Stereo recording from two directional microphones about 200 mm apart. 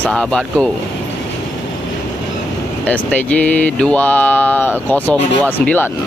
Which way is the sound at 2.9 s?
10° left (ahead or behind).